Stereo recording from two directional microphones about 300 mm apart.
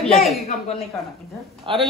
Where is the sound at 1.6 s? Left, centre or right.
Centre.